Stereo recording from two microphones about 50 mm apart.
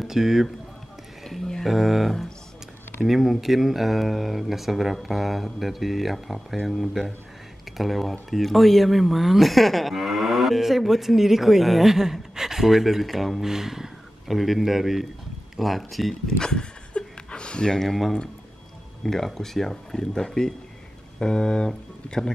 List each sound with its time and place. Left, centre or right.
0.0 s speech: centre
1.6 s speech: centre
16.3 s a sound: centre
19.0 s speech: centre